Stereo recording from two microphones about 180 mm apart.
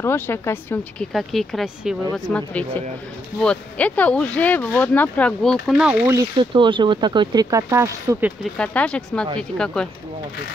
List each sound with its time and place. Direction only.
0.0 s speech: 15° left (ahead or behind)
1.1 s speech: centre (ahead or behind)
6.5 s speech: 25° right (ahead or behind)
8.5 s speech: 5° left (ahead or behind)